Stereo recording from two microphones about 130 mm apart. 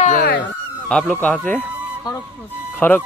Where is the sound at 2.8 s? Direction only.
15° left (ahead or behind).